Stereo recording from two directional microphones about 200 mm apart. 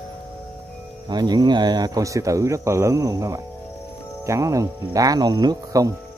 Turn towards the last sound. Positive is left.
turn(degrees=-15)  # may be behind; listen again after turning